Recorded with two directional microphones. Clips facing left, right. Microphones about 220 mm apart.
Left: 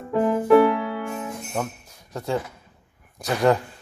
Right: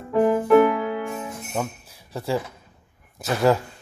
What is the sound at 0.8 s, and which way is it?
Music, 15° right (ahead or behind).